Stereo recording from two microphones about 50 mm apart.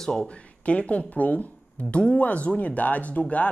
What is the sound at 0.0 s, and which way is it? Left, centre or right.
Speech, centre.